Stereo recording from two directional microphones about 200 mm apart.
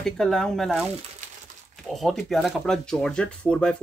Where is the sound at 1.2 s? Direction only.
35° right (ahead or behind).